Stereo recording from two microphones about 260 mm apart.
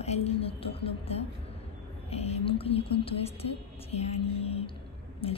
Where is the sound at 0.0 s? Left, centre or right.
Left.